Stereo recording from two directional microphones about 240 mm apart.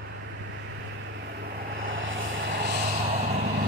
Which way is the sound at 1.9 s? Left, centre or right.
Right.